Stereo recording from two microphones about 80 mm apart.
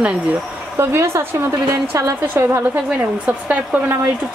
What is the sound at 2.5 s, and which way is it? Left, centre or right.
Speech, right.